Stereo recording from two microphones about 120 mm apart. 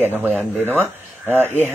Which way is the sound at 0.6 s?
15° right (ahead or behind).